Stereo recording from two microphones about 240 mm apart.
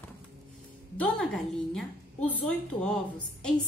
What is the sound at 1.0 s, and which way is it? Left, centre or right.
A woman's voice, centre.